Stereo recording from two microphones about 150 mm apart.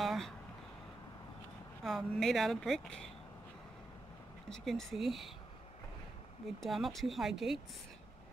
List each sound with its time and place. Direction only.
0.0 s a sound: centre (ahead or behind)
1.9 s a woman's voice: centre (ahead or behind)
4.5 s a woman's voice: centre (ahead or behind)
6.6 s a woman's voice: centre (ahead or behind)